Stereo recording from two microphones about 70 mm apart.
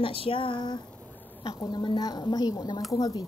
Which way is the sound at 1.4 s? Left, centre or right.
Left.